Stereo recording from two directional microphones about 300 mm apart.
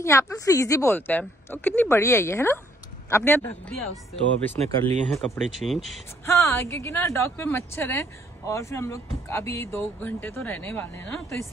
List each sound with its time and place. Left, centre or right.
0.0 s speech: centre
4.6 s speech: right
5.1 s speech: centre